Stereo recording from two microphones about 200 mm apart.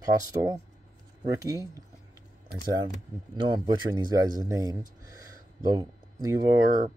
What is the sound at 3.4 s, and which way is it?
Speech, 25° right (ahead or behind).